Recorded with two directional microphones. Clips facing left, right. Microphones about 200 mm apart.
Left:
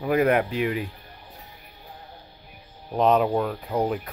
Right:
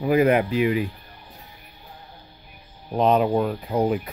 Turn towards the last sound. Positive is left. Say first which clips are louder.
# right 3 dB
turn(degrees=-5)  # may be behind; listen again after turning